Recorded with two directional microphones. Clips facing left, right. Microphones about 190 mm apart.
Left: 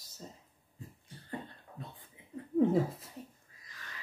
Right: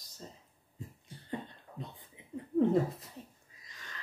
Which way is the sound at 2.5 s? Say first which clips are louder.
Even; centre (ahead or behind).